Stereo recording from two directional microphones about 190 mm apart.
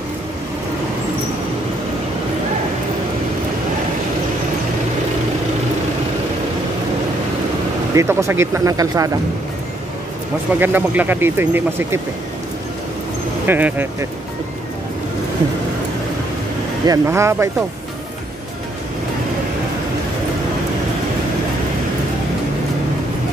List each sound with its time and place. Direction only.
7.9 s speech: 15° right (ahead or behind)
10.6 s speech: 10° right (ahead or behind)
13.5 s speech: 10° right (ahead or behind)
16.8 s speech: 15° right (ahead or behind)